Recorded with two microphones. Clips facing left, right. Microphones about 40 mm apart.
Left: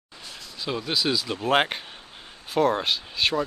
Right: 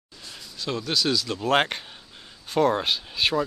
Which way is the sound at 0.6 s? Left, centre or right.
Centre.